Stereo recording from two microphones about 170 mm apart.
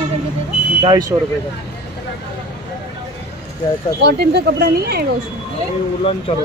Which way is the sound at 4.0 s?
75° right (ahead or behind).